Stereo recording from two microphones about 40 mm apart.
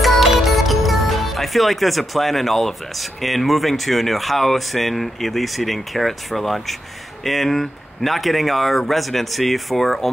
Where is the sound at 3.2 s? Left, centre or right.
Centre.